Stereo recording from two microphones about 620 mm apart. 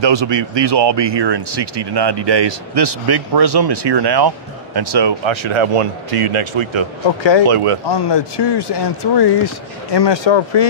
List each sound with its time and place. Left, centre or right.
0.0 s speech: right
7.9 s speech: left